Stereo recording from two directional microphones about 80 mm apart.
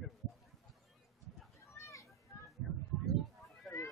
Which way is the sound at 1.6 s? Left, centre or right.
Left.